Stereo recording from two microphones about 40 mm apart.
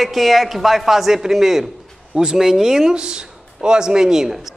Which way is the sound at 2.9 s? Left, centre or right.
Right.